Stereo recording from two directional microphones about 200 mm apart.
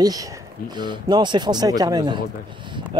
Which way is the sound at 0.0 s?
20° right (ahead or behind).